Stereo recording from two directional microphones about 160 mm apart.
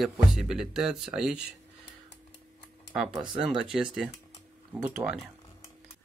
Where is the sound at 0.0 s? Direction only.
5° right (ahead or behind).